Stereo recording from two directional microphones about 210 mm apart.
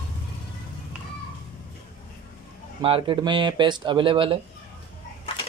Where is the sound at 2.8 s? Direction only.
25° right (ahead or behind).